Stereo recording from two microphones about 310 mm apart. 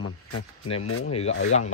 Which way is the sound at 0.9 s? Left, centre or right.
Left.